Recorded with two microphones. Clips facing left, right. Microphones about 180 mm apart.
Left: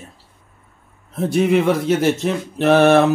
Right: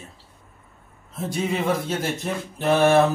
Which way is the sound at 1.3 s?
70° left (ahead or behind).